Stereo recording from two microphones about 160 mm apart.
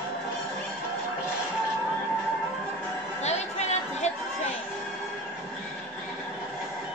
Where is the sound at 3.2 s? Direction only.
45° left (ahead or behind).